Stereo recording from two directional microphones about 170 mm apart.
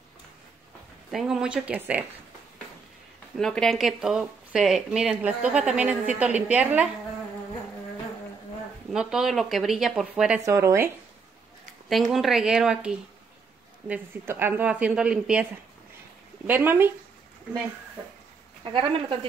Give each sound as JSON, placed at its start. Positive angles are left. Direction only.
{"t": 1.1, "sound": "speech", "side_deg": -5}
{"t": 3.3, "sound": "speech", "side_deg": 5}
{"t": 8.9, "sound": "speech", "side_deg": -5}
{"t": 10.4, "sound": "speech", "side_deg": -15}
{"t": 11.9, "sound": "speech", "side_deg": 0}
{"t": 18.6, "sound": "speech", "side_deg": -30}